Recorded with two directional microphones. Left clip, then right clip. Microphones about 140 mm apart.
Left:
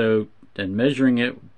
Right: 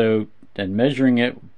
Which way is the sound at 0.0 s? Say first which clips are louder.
Right 1 dB; 30° right (ahead or behind).